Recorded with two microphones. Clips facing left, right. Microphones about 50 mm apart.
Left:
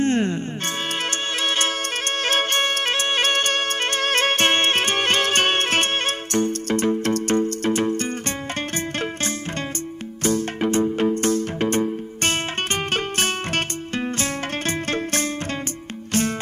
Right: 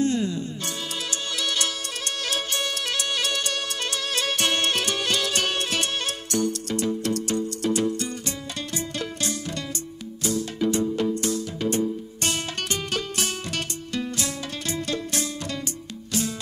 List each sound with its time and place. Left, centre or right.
0.0 s music: left
1.4 s music: left
10.2 s music: left